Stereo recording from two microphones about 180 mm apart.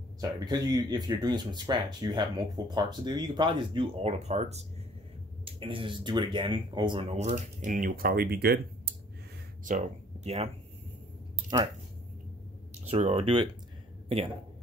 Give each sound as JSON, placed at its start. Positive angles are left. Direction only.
{"t": 0.5, "sound": "speech", "side_deg": -20}
{"t": 10.2, "sound": "speech", "side_deg": -35}
{"t": 12.8, "sound": "speech", "side_deg": -35}